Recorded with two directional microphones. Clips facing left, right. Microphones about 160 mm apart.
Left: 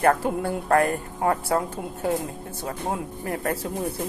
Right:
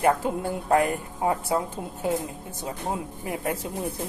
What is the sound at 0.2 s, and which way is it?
Speech, 15° right (ahead or behind).